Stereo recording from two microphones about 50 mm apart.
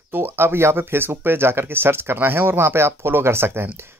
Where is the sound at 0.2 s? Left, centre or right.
Right.